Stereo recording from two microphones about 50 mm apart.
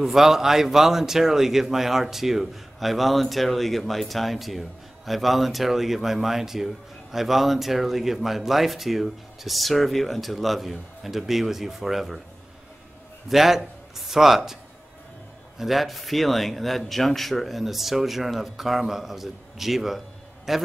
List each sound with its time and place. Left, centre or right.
0.0 s a man's voice: centre
13.3 s a man's voice: centre